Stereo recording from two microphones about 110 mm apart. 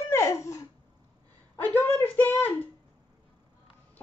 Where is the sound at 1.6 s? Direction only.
15° left (ahead or behind).